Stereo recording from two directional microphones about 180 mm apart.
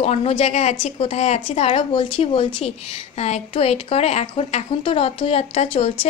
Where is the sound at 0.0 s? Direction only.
35° left (ahead or behind).